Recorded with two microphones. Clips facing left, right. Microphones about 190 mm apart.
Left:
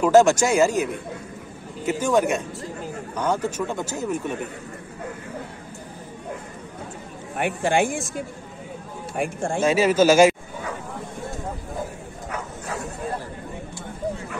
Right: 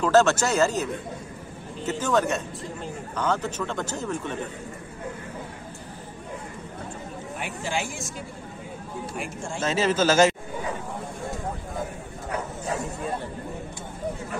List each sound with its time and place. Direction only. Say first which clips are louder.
0.0 s a man's voice: left 4 dB; 10° left (ahead or behind)
7.3 s speech: left 10 dB; 60° left (ahead or behind)
9.1 s speech: left 11 dB; 55° left (ahead or behind)
9.6 s a man's voice: left 5 dB; 10° left (ahead or behind)